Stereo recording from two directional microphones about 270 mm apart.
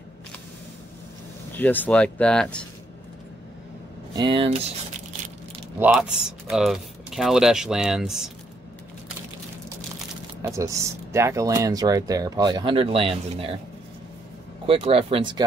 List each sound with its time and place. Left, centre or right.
1.5 s speech: centre
4.1 s speech: centre
5.8 s speech: centre
10.4 s speech: centre
14.7 s speech: right